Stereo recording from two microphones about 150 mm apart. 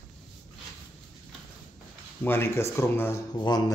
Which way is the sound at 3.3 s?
30° left (ahead or behind).